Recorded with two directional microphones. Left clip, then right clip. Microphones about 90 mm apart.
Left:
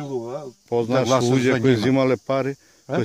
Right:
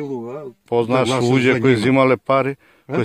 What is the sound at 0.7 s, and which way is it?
Speech, 20° left (ahead or behind).